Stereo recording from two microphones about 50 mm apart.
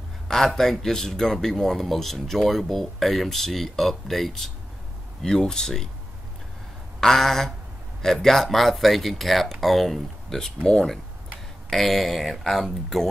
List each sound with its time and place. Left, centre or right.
0.6 s speech: centre
7.0 s speech: centre
10.6 s speech: centre
11.7 s speech: centre